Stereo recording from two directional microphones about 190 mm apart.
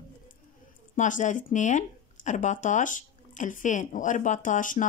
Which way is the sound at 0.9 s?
40° left (ahead or behind).